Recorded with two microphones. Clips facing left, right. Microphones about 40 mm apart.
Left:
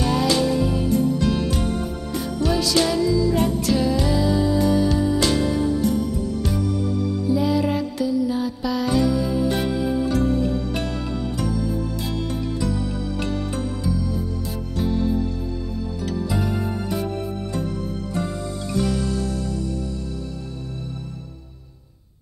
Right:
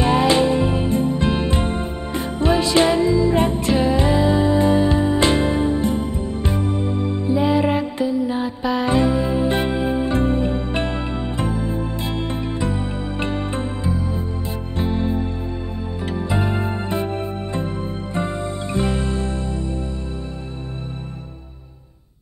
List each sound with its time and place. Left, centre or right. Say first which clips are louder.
0.0 s music: right 4 dB; right